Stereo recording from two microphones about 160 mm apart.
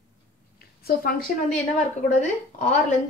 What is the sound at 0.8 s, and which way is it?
Speech, 65° left (ahead or behind).